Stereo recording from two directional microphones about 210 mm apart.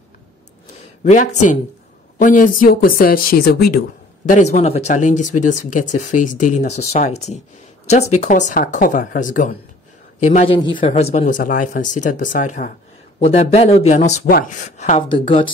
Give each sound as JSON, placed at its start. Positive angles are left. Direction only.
{"t": 1.0, "sound": "speech", "side_deg": 35}
{"t": 4.3, "sound": "speech", "side_deg": 35}